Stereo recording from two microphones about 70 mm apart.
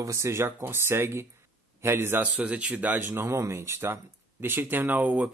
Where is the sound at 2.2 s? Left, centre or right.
Centre.